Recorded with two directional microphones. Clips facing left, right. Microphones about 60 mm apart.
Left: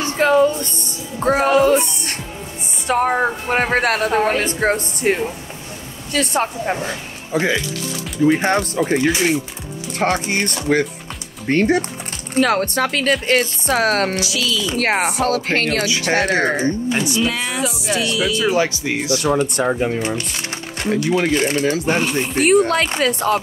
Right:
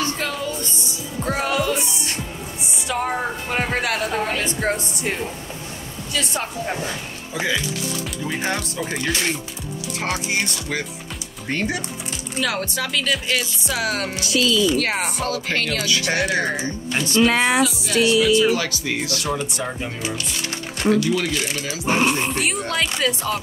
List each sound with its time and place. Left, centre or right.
0.0 s music: left
0.7 s speech: left
6.6 s speech: left
9.9 s speech: left
14.2 s speech: right
14.7 s speech: left
17.1 s speech: right
17.6 s speech: left
19.6 s speech: left